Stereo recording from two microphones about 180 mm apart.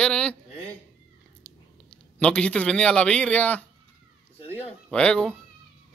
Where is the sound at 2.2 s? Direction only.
5° left (ahead or behind).